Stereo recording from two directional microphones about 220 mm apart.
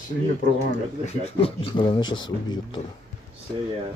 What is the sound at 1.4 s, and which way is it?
Speech, 25° left (ahead or behind).